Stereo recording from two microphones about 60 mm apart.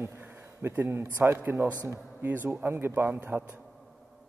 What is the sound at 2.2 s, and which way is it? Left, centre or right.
A man's voice, right.